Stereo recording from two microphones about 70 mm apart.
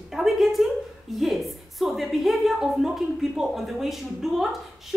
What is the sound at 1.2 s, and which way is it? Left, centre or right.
A woman's voice, centre.